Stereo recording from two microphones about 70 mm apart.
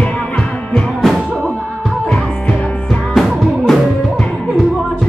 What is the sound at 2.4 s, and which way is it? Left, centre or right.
Music, centre.